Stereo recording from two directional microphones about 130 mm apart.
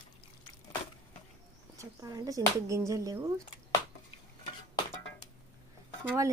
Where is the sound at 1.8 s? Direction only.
25° right (ahead or behind).